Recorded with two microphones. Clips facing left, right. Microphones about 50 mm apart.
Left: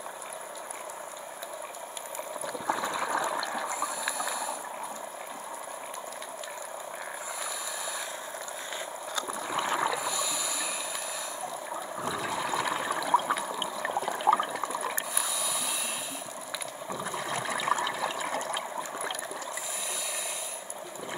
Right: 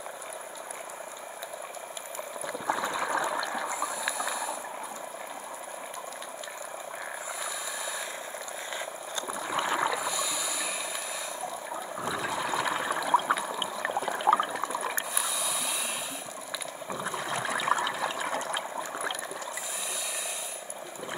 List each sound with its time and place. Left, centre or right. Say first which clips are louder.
2.4 s a sound: right 1 dB; centre
3.3 s toilet flush: right 1 dB; centre
3.7 s water: even; centre
4.0 s ratchet: right 1 dB; centre
9.3 s stream: right 2 dB; centre
9.8 s snort: even; centre
12.1 s water: right 1 dB; centre
12.5 s a sound: right 1 dB; centre
16.9 s boat: right 1 dB; centre
17.8 s water: right 1 dB; centre